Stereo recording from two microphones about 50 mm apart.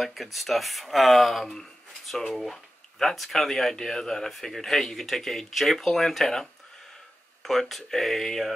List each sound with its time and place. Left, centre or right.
0.0 s speech: centre